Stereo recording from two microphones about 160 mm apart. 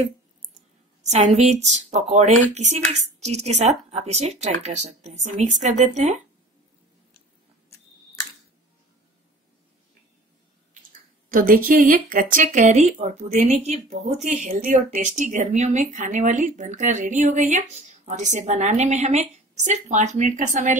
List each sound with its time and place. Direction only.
1.0 s a woman's voice: 45° right (ahead or behind)
11.2 s a woman's voice: 60° right (ahead or behind)